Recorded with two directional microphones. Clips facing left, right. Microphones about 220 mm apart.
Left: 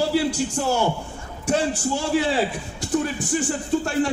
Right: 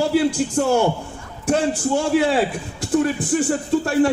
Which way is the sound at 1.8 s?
55° right (ahead or behind).